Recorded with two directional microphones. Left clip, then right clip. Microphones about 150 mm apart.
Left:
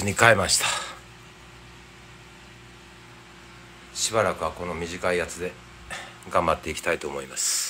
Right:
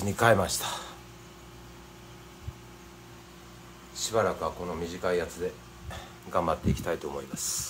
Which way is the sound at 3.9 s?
20° left (ahead or behind).